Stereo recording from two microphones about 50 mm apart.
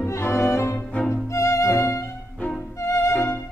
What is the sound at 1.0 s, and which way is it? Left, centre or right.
Music, left.